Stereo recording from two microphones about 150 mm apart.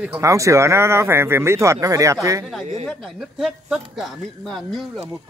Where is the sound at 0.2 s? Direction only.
20° right (ahead or behind).